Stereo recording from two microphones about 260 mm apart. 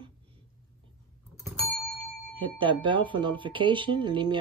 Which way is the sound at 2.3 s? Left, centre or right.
Centre.